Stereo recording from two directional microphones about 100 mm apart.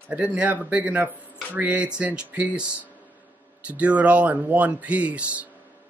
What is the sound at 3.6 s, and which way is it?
Speech, 15° right (ahead or behind).